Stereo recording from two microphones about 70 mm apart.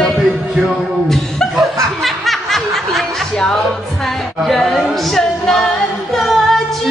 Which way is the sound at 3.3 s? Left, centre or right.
Centre.